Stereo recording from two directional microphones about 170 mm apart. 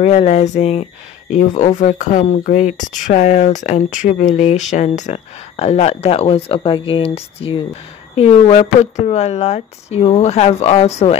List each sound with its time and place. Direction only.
0.0 s speech: 40° left (ahead or behind)